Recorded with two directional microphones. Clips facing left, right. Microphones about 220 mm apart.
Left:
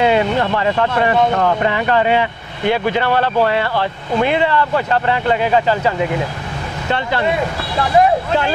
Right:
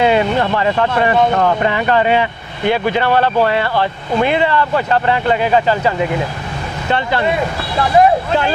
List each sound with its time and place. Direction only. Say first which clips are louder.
0.0 s speech: right 1 dB; 15° right (ahead or behind)